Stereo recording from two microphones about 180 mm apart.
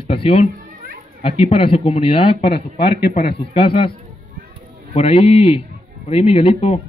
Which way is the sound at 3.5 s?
30° left (ahead or behind).